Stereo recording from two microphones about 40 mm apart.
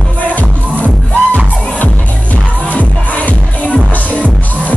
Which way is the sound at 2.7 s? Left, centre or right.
Left.